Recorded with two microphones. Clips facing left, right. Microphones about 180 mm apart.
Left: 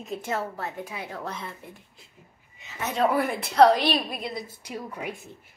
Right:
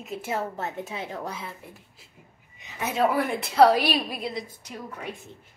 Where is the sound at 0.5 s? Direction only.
20° right (ahead or behind).